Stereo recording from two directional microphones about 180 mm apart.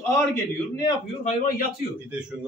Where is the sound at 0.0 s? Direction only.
20° left (ahead or behind).